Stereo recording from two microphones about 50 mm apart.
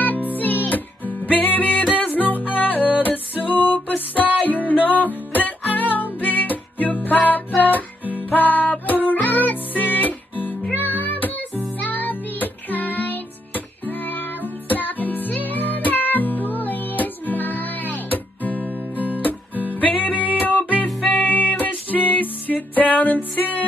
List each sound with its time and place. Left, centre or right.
0.0 s music: left